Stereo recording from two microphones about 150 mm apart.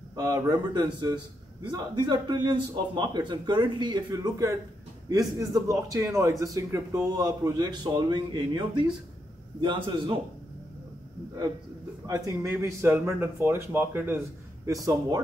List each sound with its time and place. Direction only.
0.1 s a man's voice: 25° right (ahead or behind)
12.1 s a man's voice: 20° right (ahead or behind)